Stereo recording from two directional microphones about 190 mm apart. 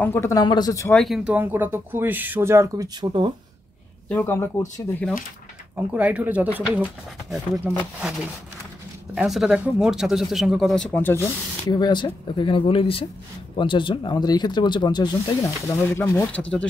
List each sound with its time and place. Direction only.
0.0 s speech: 15° left (ahead or behind)
0.9 s speech: centre (ahead or behind); by 3.3 s 20° right (ahead or behind)
4.1 s speech: 10° left (ahead or behind)
5.8 s speech: 5° right (ahead or behind)
9.1 s speech: 5° right (ahead or behind)